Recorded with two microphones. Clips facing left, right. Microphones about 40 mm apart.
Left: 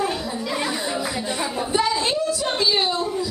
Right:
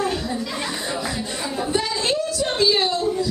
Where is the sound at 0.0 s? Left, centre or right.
Centre.